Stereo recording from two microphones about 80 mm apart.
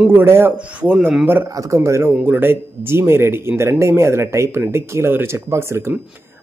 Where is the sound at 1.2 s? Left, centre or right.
Right.